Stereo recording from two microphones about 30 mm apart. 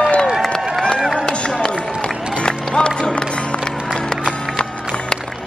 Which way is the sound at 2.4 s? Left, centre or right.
Left.